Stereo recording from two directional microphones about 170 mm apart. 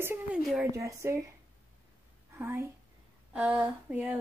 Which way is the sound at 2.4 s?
15° right (ahead or behind).